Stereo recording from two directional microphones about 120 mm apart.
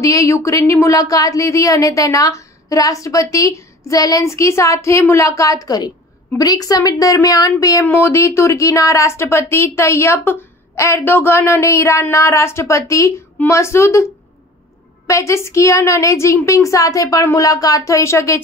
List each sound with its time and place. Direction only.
0.0 s a woman's voice: 25° left (ahead or behind)
7.8 s a woman's voice: 20° left (ahead or behind)
15.0 s a woman's voice: 25° left (ahead or behind)